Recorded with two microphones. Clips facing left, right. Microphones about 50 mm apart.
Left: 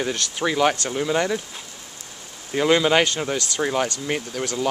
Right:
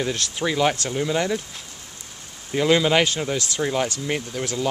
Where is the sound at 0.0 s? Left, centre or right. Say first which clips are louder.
Left 1 dB; centre.